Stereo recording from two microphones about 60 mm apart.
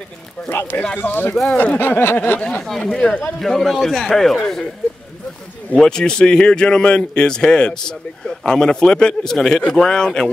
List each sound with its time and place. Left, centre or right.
0.5 s speech: left
2.9 s a man's voice: centre
5.8 s a man's voice: centre